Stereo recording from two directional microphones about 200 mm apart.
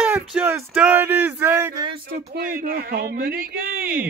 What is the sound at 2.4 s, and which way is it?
Speech, 50° right (ahead or behind).